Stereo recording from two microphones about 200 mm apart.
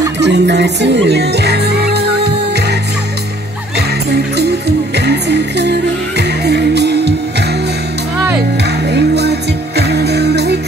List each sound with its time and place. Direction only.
0.2 s music: 60° right (ahead or behind)